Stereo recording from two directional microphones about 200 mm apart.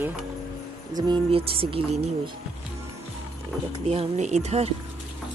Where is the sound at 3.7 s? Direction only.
30° right (ahead or behind).